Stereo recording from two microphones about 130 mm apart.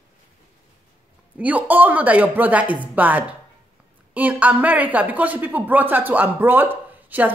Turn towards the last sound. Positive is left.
turn(degrees=-15)  # may be behind; listen again after turning